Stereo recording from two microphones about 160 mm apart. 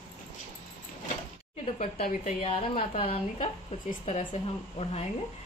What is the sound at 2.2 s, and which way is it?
A woman's voice, 35° left (ahead or behind).